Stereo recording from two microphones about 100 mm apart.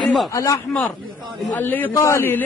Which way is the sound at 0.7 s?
Centre (ahead or behind).